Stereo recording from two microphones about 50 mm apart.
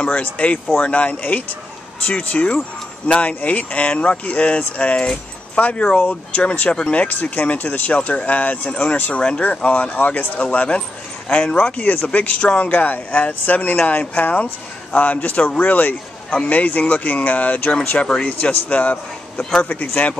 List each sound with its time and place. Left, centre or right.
0.0 s speech: left
17.9 s speech: centre
18.2 s speech: left